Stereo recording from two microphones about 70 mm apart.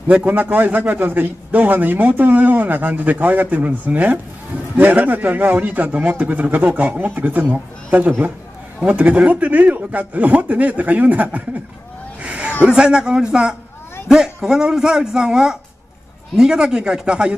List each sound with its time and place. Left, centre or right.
0.1 s a man's voice: right
12.2 s a sound: centre
12.6 s a man's voice: centre